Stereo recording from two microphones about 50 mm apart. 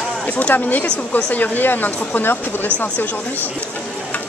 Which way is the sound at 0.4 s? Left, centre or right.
Left.